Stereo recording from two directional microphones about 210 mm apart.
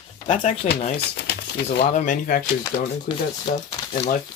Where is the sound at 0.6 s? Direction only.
35° left (ahead or behind).